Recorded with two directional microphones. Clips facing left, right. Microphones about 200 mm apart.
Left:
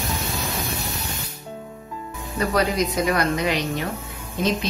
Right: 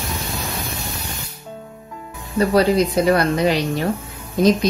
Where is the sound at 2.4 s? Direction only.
30° right (ahead or behind).